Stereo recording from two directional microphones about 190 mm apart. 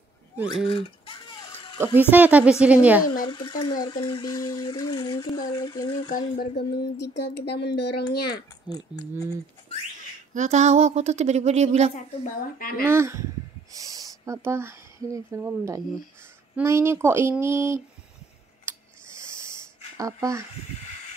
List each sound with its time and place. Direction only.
0.7 s a sound: 30° left (ahead or behind)
2.0 s speech: 10° right (ahead or behind)
3.1 s speech: 20° left (ahead or behind)
6.5 s speech: 60° left (ahead or behind)
8.6 s speech: 20° left (ahead or behind)
10.3 s speech: 40° right (ahead or behind)
12.2 s speech: 50° left (ahead or behind)
12.8 s speech: 15° right (ahead or behind)
18.7 s a sound: 10° right (ahead or behind)
20.0 s speech: 15° right (ahead or behind)